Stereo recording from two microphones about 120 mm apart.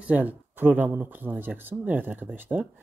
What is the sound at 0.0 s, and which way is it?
Speech, 15° right (ahead or behind).